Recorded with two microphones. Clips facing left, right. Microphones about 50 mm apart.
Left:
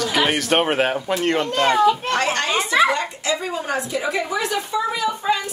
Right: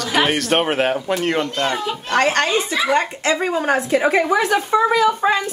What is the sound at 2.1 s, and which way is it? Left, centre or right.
Speech, right.